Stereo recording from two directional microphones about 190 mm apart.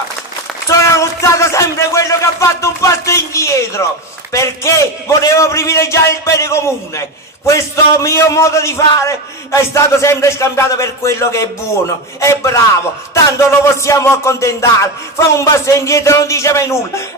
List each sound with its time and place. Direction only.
0.7 s a man's voice: 15° left (ahead or behind)
13.8 s a man's voice: 15° left (ahead or behind)